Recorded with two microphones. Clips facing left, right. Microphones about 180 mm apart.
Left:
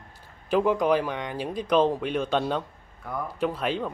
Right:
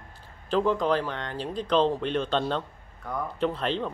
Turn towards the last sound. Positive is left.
turn(degrees=10)  # may be behind; listen again after turning